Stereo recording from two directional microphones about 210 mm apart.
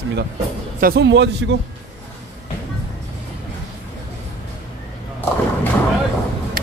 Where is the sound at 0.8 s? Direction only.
45° right (ahead or behind).